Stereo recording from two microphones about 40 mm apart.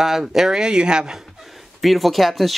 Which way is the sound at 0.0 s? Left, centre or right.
Centre.